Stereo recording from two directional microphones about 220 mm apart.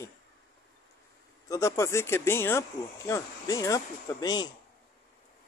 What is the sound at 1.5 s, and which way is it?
Speech, 15° left (ahead or behind).